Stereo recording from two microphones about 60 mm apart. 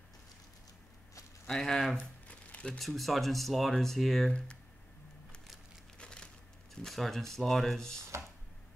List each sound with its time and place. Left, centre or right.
1.5 s speech: centre
2.2 s crumpling: centre
2.8 s speech: centre
5.9 s a sound: centre
6.7 s speech: centre